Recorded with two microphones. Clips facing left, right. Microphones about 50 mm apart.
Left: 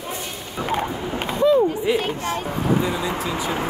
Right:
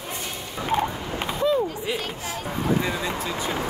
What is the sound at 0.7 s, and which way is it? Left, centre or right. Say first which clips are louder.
Creak: even; left.